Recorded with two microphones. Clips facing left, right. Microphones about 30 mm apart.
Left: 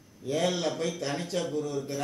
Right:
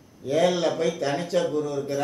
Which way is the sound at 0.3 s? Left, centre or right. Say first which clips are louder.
Right 6 dB; centre.